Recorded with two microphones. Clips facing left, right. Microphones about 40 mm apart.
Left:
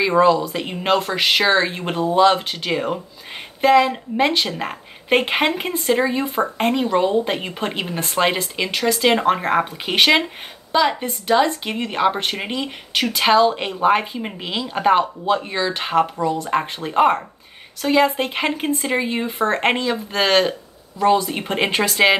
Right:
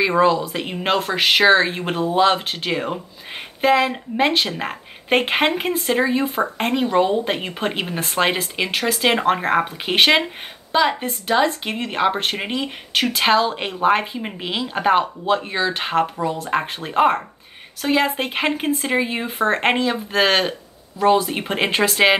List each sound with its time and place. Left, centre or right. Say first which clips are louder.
0.0 s a woman's voice: left 1 dB; centre
16.2 s speech: left 2 dB; centre
16.4 s speech: left 1 dB; centre